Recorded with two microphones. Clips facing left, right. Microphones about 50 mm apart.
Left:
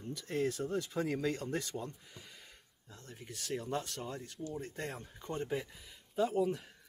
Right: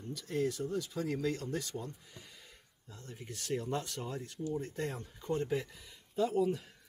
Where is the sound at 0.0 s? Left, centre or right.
Left.